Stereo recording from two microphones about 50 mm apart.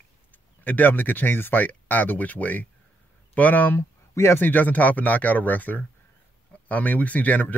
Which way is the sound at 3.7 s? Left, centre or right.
Left.